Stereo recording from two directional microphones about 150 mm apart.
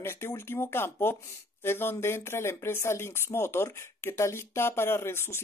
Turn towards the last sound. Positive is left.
turn(degrees=15)  # may be behind; listen again after turning